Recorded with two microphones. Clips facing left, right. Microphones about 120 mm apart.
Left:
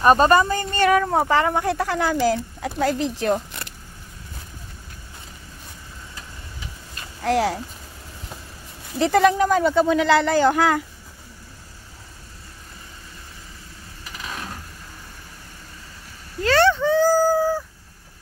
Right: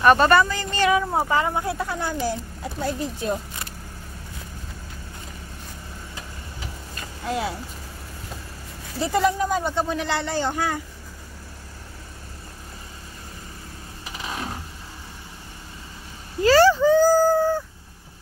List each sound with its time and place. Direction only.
0.0 s speech: 35° left (ahead or behind); by 1.2 s 55° left (ahead or behind)
1.3 s a woman's voice: 65° left (ahead or behind)
7.2 s speech: 75° left (ahead or behind)
8.9 s a woman's voice: 70° left (ahead or behind); by 10.8 s 90° left
16.4 s a sound: 5° right (ahead or behind)